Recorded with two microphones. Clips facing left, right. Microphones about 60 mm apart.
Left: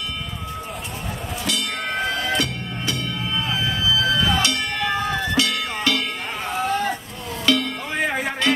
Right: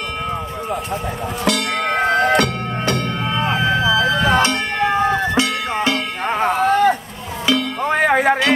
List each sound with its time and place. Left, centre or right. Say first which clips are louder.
1.4 s music: right 8 dB; right
4.4 s music: right 6 dB; right
6.2 s music: right 8 dB; right
7.5 s music: right 2 dB; centre
7.8 s music: right 9 dB; right